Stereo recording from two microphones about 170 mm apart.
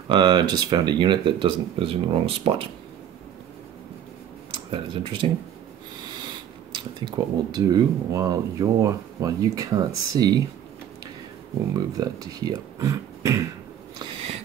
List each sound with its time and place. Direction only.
0.1 s speech: 25° right (ahead or behind)
4.6 s speech: 30° right (ahead or behind)
6.7 s speech: 25° right (ahead or behind)
12.0 s speech: 20° right (ahead or behind)